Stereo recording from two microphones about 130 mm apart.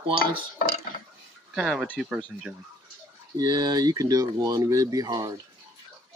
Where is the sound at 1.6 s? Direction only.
5° right (ahead or behind).